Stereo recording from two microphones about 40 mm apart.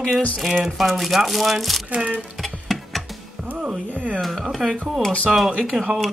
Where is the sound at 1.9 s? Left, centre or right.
Right.